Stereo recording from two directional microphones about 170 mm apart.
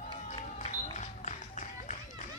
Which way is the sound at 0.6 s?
45° left (ahead or behind).